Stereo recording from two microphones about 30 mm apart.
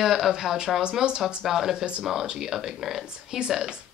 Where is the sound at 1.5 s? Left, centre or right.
Centre.